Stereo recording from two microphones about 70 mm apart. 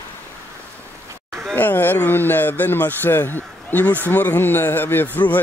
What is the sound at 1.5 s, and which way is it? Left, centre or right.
Speech, left.